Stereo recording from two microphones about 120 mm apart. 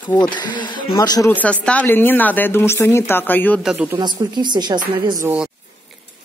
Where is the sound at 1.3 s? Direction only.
10° left (ahead or behind).